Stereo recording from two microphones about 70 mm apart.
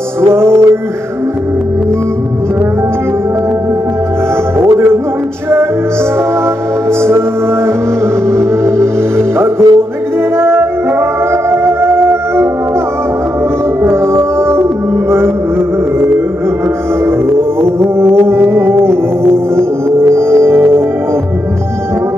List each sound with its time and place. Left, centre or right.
0.2 s music: right
4.6 s music: right
6.9 s music: right
13.8 s music: right
17.0 s music: right